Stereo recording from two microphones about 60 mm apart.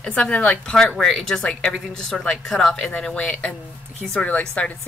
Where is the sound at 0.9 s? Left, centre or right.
Centre.